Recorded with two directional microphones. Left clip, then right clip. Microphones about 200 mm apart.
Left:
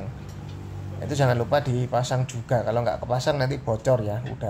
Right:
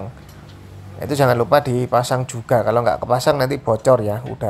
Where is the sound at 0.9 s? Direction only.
30° right (ahead or behind).